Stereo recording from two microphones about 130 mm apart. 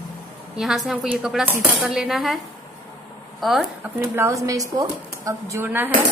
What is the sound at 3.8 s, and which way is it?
Speech, 20° right (ahead or behind).